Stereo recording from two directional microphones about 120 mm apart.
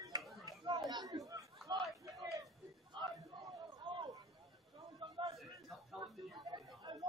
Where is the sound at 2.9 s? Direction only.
40° right (ahead or behind).